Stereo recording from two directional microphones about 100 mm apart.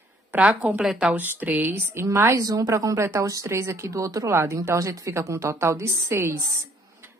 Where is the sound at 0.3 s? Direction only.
10° right (ahead or behind).